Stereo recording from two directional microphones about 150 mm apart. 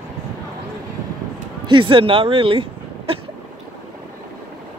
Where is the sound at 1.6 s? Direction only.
35° right (ahead or behind).